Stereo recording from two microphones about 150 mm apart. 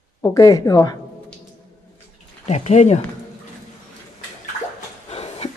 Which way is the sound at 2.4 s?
45° left (ahead or behind).